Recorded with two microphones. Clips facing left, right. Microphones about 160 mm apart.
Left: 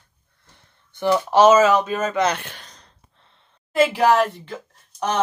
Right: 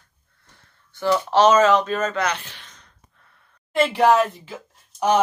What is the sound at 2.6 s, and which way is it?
Gasp, 35° left (ahead or behind).